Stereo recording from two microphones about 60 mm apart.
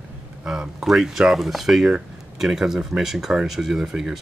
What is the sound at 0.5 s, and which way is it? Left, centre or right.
Speech, centre.